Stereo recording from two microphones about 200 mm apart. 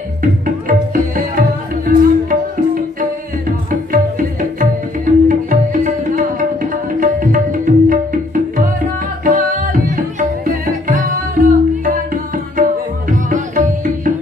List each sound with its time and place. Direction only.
0.2 s music: 45° right (ahead or behind)
6.7 s tabla: 45° right (ahead or behind)
9.2 s music: 40° right (ahead or behind)